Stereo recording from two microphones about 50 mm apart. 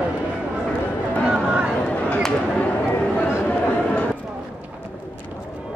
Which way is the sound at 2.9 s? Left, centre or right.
Left.